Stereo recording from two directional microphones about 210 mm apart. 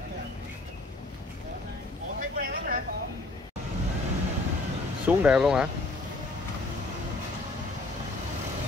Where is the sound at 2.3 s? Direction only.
45° right (ahead or behind).